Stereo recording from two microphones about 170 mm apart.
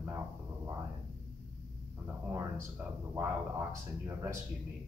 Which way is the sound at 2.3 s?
15° right (ahead or behind).